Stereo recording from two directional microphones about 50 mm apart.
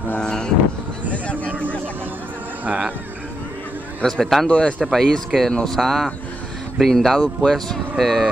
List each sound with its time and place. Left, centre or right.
0.2 s a sound: centre
4.0 s a man's voice: centre
4.5 s a man's voice: left; by 8.3 s centre